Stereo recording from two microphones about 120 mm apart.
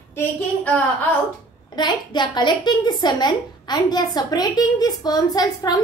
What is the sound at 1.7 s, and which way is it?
A woman's voice, 35° left (ahead or behind).